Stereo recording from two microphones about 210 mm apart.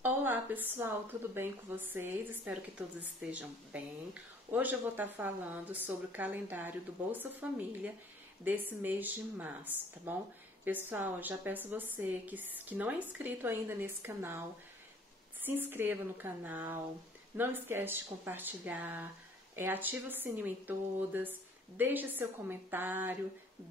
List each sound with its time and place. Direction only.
0.0 s speech: 10° right (ahead or behind)
15.4 s speech: 10° right (ahead or behind)